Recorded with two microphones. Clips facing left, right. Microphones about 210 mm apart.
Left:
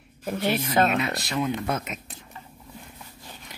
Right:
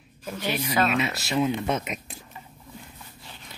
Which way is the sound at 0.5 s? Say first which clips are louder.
Left 2 dB; 50° left (ahead or behind).